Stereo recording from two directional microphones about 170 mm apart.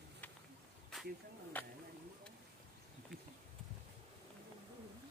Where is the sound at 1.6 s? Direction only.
10° left (ahead or behind).